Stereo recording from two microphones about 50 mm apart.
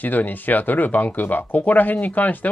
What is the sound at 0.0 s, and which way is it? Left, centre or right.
Speech, left.